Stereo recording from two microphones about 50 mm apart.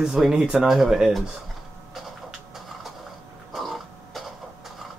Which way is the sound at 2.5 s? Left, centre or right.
Centre.